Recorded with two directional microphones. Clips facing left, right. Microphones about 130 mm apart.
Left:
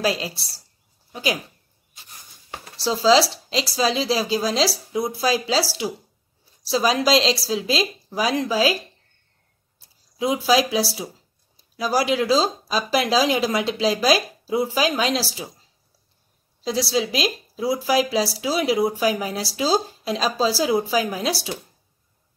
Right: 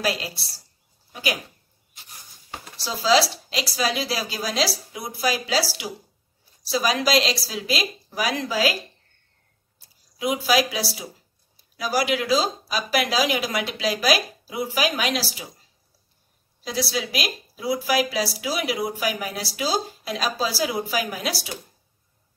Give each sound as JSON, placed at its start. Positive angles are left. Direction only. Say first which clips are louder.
{"t": 0.0, "sound": "a woman's voice", "louder": "left 3 dB", "side_deg": 25}
{"t": 2.8, "sound": "a woman's voice", "louder": "left 3 dB", "side_deg": 30}
{"t": 10.1, "sound": "a woman's voice", "louder": "left 2 dB", "side_deg": 25}
{"t": 16.6, "sound": "a woman's voice", "louder": "left 5 dB", "side_deg": 30}